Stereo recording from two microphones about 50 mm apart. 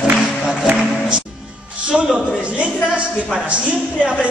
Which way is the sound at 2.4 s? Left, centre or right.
Right.